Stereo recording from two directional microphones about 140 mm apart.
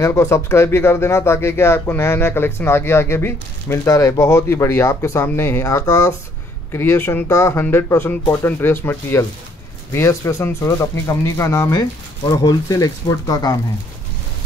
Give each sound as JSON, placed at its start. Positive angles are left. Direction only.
{"t": 0.0, "sound": "speech", "side_deg": 20}